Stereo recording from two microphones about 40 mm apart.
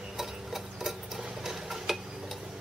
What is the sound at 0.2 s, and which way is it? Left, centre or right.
Stir, centre.